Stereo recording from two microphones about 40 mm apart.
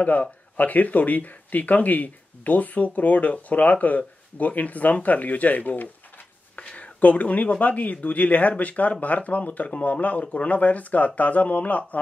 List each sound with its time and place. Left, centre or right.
0.0 s speech: left
6.6 s speech: left